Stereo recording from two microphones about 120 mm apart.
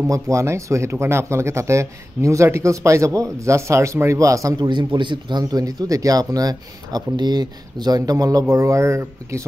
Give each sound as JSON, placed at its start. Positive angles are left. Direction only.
{"t": 0.0, "sound": "speech", "side_deg": -25}
{"t": 4.6, "sound": "speech", "side_deg": -40}